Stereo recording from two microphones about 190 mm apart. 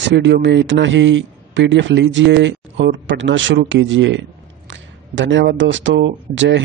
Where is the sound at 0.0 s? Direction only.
70° right (ahead or behind).